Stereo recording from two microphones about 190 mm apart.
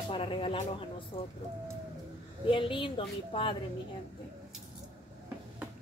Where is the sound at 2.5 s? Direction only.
25° left (ahead or behind).